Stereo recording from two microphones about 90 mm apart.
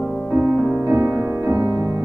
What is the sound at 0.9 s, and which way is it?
Music, 15° right (ahead or behind).